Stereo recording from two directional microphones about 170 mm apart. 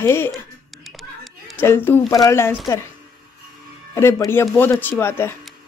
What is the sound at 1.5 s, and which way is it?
Speech, 15° left (ahead or behind).